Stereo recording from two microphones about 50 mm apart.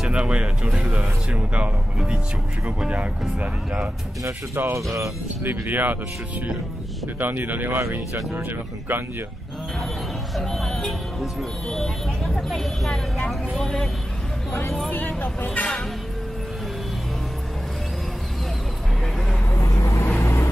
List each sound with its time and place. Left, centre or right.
0.0 s speech: centre
0.8 s speech: centre
1.3 s speech: right
2.9 s speech: right
4.6 s speech: right
7.2 s speech: right
10.3 s speech: centre
14.9 s speech: left
19.5 s vehicle: left